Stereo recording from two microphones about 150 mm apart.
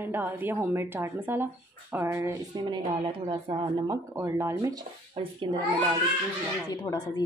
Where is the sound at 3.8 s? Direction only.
20° right (ahead or behind).